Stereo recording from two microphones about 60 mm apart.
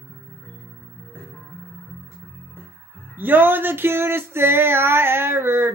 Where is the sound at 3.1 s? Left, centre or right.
Right.